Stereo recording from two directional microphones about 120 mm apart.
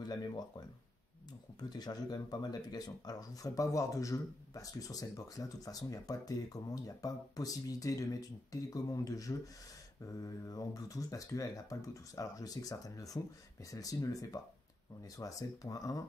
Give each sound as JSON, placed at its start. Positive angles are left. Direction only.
{"t": 0.0, "sound": "speech", "side_deg": 35}